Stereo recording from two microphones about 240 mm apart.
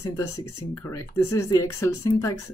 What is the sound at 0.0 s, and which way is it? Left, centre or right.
Speech, centre.